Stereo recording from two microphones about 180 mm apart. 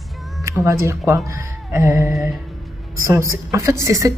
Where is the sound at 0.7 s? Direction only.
15° right (ahead or behind).